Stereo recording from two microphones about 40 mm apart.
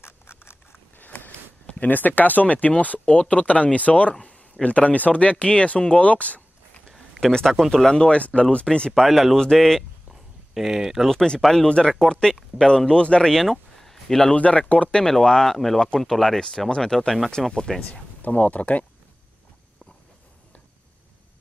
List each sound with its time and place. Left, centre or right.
0.0 s a sound: left
0.9 s a sound: left
1.8 s speech: left
7.2 s speech: centre
8.0 s speech: left
8.9 s speech: centre
9.4 s speech: centre
9.8 s a sound: centre
11.6 s speech: left
13.3 s a sound: centre
14.3 s speech: left
15.0 s speech: centre
16.3 s speech: centre
18.3 s speech: left